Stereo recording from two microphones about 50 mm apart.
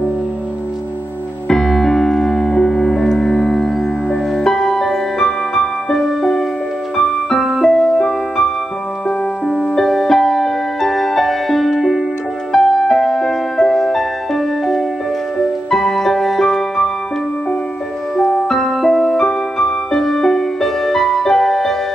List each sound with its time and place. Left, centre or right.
1.5 s music: centre
9.5 s music: centre
18.1 s music: centre
18.5 s music: centre